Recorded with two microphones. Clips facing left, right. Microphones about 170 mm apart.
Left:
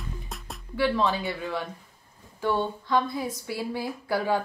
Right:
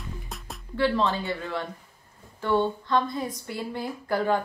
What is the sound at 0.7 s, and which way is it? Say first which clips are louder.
A woman's voice: even; 10° left (ahead or behind).